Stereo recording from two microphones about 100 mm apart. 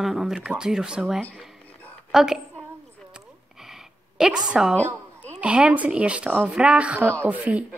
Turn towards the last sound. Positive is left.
turn(degrees=-15)  # may be behind; listen again after turning